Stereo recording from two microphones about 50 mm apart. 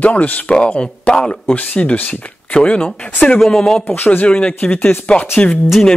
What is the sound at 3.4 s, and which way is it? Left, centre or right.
Speech, centre.